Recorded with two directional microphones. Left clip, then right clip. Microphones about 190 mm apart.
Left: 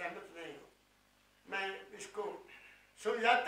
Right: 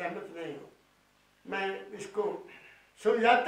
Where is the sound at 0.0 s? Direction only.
15° right (ahead or behind).